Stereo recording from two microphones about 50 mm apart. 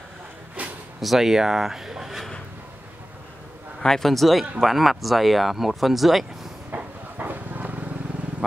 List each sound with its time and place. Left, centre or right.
0.6 s a sound: right
1.0 s speech: centre
3.8 s speech: centre
6.7 s dog: right